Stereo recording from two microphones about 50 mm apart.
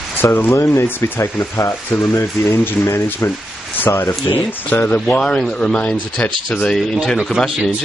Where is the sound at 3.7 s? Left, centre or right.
Left.